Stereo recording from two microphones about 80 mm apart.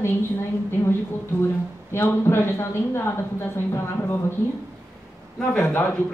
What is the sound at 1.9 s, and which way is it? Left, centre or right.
A woman's voice, left.